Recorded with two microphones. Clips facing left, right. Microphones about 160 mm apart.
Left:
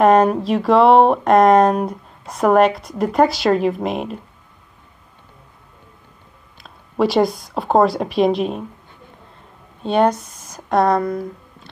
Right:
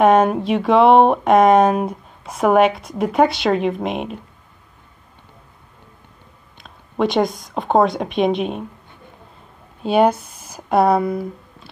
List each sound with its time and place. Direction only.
0.0 s speech: centre (ahead or behind)
6.6 s speech: 5° left (ahead or behind)
9.8 s speech: 5° right (ahead or behind)
10.1 s a sound: 30° right (ahead or behind)
10.5 s speech: 5° right (ahead or behind)